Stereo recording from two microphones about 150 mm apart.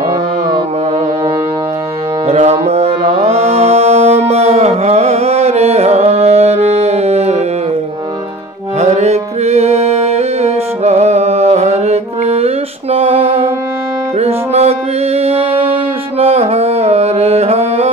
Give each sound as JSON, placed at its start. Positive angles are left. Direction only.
{"t": 2.2, "sound": "music", "side_deg": -45}
{"t": 8.7, "sound": "music", "side_deg": -45}